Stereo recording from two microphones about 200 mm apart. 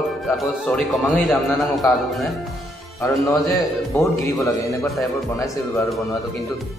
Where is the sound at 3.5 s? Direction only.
15° left (ahead or behind).